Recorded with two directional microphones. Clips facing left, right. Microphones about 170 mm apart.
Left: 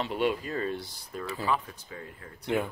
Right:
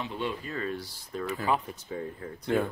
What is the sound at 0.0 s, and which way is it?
Speech, 70° left (ahead or behind).